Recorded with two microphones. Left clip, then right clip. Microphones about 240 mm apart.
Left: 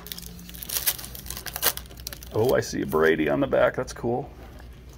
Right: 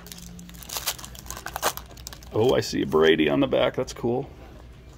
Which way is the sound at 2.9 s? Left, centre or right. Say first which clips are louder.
Right 2 dB; right.